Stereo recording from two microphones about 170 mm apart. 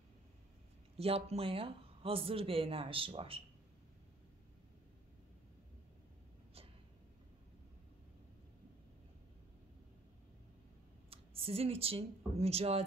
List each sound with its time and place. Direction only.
0.9 s speech: 35° right (ahead or behind)
11.1 s speech: 35° right (ahead or behind)